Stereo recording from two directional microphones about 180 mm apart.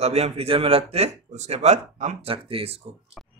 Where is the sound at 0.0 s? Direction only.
35° right (ahead or behind).